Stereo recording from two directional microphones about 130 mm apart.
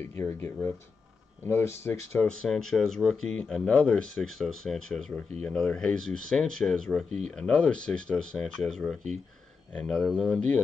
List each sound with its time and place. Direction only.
0.1 s speech: 20° left (ahead or behind)
2.4 s speech: 5° left (ahead or behind)